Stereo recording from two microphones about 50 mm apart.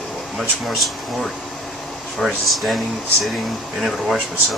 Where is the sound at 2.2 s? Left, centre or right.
Centre.